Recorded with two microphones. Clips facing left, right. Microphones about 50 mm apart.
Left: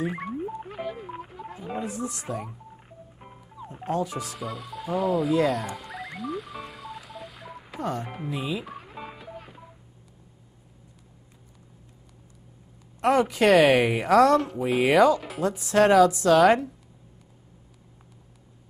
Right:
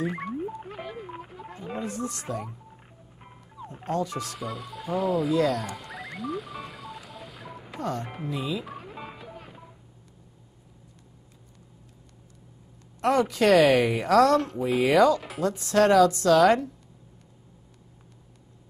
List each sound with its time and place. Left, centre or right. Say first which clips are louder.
0.0 s music: even; centre
5.4 s music: left 1 dB; centre
13.0 s speech: left 1 dB; centre
14.8 s speech: left 1 dB; centre
15.1 s speech: left 1 dB; centre